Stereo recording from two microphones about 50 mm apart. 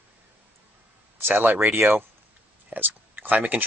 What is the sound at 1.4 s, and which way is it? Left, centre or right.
Speech, right.